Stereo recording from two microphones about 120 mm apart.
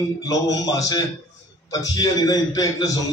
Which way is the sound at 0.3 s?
30° left (ahead or behind).